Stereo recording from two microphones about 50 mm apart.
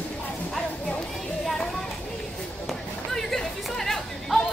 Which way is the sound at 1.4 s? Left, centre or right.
Centre.